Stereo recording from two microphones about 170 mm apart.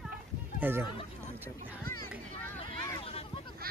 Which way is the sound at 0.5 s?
10° right (ahead or behind).